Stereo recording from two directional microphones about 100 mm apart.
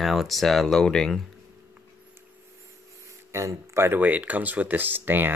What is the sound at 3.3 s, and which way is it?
Speech, 30° right (ahead or behind).